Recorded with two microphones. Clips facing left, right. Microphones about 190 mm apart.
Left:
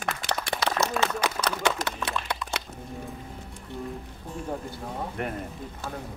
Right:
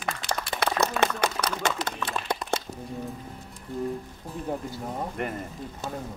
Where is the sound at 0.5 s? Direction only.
60° right (ahead or behind).